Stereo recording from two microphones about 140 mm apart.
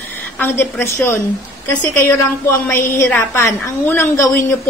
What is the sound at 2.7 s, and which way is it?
A woman's voice, 15° left (ahead or behind).